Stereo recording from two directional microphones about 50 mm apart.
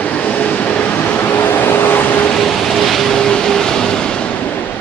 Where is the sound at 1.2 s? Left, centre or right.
Left.